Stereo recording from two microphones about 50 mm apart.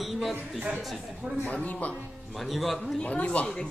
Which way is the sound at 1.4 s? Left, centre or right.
Left.